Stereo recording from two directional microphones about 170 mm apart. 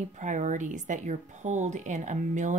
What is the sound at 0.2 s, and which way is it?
Speech, 45° right (ahead or behind).